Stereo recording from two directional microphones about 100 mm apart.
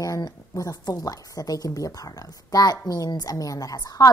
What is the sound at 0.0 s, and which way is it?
A woman's voice, 35° left (ahead or behind).